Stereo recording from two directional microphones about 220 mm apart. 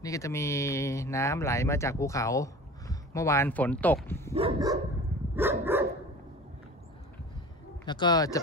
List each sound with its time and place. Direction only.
0.0 s speech: 15° left (ahead or behind)
4.3 s dog: 25° right (ahead or behind)
5.3 s dog: 10° right (ahead or behind)
7.8 s speech: 20° left (ahead or behind)